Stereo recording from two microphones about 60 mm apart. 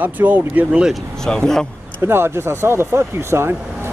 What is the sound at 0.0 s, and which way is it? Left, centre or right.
Speech, right.